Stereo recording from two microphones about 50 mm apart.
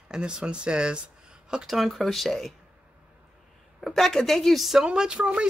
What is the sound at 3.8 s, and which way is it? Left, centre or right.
Speech, centre.